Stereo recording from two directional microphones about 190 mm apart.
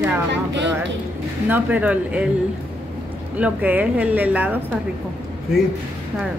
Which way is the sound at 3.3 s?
10° right (ahead or behind).